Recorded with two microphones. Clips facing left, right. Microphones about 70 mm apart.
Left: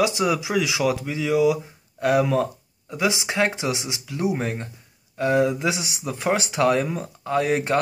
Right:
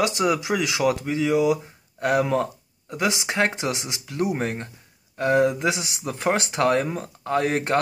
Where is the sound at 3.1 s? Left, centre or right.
Right.